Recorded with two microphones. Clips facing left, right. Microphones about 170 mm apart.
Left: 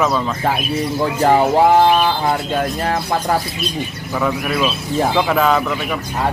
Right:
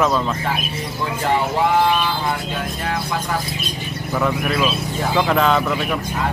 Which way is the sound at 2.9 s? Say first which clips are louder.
Left 5 dB; 45° left (ahead or behind).